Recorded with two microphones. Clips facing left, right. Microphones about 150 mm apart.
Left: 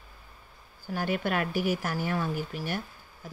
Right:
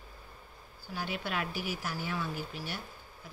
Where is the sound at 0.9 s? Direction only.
50° left (ahead or behind).